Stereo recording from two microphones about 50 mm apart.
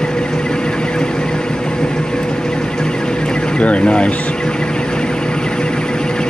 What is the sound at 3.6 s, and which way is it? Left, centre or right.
Speech, left.